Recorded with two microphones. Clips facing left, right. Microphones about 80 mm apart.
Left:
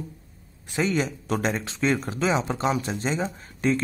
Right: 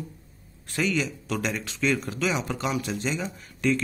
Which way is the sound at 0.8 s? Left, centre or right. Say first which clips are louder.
Left 2 dB; left.